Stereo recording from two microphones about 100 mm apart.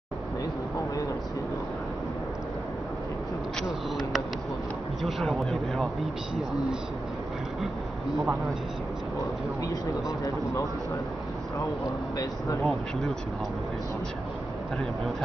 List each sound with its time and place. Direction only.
5.0 s a man's voice: centre (ahead or behind)
7.6 s speech: centre (ahead or behind)
12.2 s speech: 35° left (ahead or behind)